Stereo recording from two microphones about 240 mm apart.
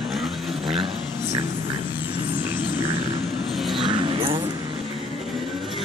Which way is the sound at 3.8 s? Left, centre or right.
Right.